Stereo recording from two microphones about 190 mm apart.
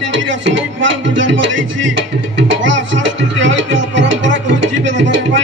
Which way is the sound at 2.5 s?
75° right (ahead or behind).